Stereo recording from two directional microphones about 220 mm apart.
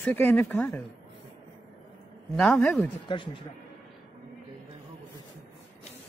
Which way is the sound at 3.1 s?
20° left (ahead or behind).